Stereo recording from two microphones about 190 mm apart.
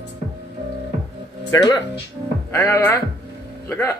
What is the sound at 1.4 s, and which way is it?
Speech, 20° left (ahead or behind).